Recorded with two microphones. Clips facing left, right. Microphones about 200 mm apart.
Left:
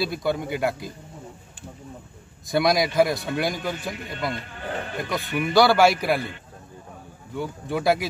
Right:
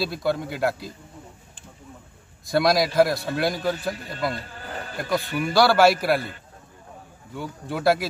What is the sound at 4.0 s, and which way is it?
Speech, 35° right (ahead or behind).